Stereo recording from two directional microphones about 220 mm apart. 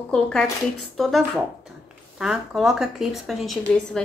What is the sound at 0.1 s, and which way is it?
A woman's voice, 5° left (ahead or behind).